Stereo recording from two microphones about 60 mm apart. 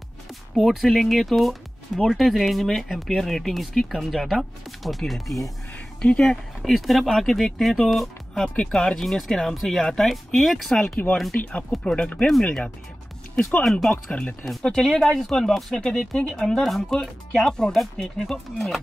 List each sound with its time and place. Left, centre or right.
0.6 s speech: centre
5.9 s speech: centre
6.2 s speech: centre
12.3 s speech: centre
14.1 s speech: centre
14.6 s speech: centre